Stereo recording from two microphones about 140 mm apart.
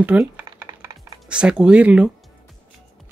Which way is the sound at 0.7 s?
25° right (ahead or behind).